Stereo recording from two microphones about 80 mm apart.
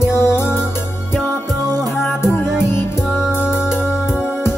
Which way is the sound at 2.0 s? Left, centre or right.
Left.